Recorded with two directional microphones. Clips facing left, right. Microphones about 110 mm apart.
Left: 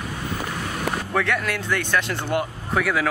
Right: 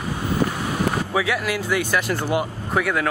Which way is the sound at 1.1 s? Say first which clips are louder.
Right 1 dB; 5° right (ahead or behind).